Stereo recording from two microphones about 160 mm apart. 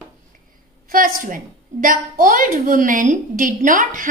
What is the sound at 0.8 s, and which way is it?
A woman's voice, 60° right (ahead or behind).